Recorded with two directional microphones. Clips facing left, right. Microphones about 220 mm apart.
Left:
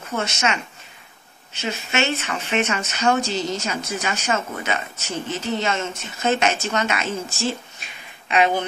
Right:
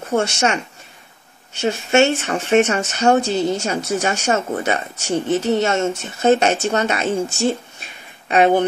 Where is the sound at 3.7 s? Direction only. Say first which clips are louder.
Right 6 dB; 35° right (ahead or behind).